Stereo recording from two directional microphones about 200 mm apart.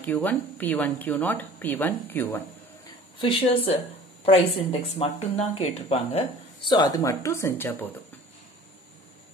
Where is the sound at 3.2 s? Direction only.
25° left (ahead or behind).